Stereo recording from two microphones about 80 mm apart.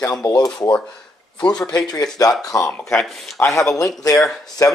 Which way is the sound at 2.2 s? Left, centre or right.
Left.